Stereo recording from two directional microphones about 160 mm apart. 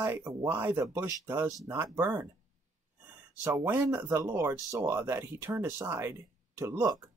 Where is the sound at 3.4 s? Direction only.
15° right (ahead or behind).